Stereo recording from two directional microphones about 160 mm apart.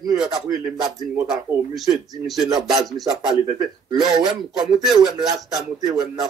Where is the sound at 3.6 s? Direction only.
25° right (ahead or behind).